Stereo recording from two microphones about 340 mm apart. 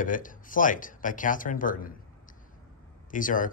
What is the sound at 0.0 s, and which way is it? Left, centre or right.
Speech, left.